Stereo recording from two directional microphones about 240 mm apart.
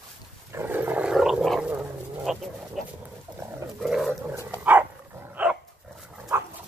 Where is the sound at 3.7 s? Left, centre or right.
Centre.